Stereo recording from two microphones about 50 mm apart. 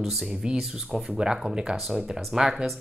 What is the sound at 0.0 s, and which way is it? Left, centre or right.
Speech, centre.